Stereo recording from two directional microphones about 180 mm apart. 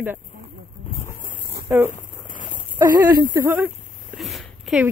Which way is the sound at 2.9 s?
25° right (ahead or behind).